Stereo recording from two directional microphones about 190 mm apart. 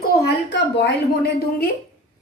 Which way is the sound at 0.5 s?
65° left (ahead or behind).